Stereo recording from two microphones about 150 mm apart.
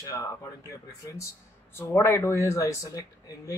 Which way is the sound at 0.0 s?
20° left (ahead or behind).